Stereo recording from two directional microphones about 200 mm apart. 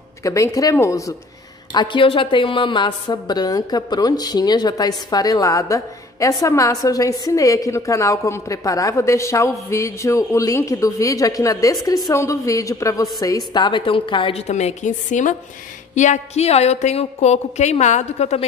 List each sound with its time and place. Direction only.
0.2 s a woman's voice: 15° left (ahead or behind); by 18.4 s 35° left (ahead or behind)